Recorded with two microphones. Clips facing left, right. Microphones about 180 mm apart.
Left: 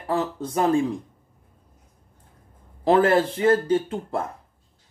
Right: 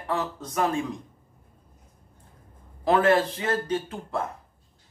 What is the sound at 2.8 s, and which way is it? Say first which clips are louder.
Speech: left 3 dB; 30° left (ahead or behind).